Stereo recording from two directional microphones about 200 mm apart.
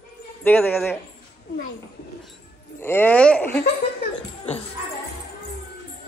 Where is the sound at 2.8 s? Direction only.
10° left (ahead or behind).